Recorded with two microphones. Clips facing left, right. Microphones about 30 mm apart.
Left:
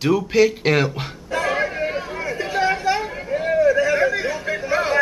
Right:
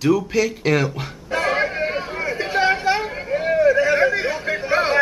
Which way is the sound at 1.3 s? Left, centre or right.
Right.